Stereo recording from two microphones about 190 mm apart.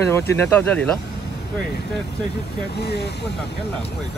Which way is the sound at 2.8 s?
60° left (ahead or behind).